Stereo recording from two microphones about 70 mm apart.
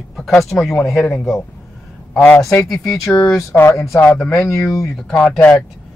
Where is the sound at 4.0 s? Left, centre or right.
Centre.